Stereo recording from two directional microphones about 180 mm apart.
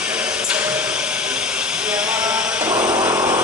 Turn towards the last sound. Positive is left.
turn(degrees=-10)  # may be behind; listen again after turning